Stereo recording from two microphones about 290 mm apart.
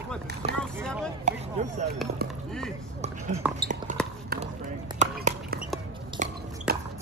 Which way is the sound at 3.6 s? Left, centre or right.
Right.